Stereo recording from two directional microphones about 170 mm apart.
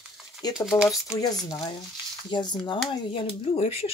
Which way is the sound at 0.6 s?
5° right (ahead or behind).